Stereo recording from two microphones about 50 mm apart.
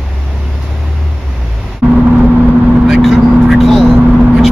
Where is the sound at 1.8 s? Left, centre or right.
Right.